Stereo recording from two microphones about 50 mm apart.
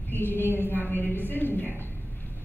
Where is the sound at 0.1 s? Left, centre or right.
Left.